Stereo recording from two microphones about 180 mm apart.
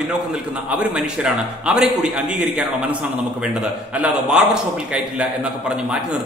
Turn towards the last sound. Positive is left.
turn(degrees=-5)  # may be behind; listen again after turning